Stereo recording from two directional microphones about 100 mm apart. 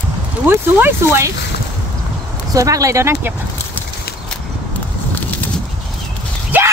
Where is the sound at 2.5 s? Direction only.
35° right (ahead or behind).